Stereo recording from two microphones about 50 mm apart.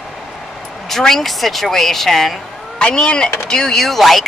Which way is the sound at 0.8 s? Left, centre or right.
Centre.